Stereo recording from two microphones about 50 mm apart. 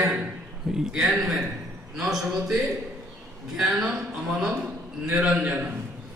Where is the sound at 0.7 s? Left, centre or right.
Centre.